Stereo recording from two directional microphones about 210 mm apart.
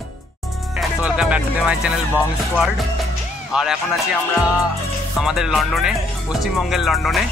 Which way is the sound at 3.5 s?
Centre (ahead or behind).